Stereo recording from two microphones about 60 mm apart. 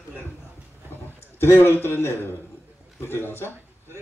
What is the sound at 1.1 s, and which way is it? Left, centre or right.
A man's voice, left.